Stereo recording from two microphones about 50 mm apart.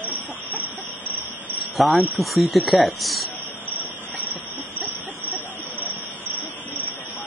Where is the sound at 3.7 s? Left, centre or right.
Right.